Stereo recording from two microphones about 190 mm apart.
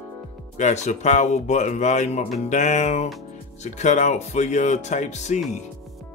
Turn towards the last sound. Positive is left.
turn(degrees=40)  # may be behind; listen again after turning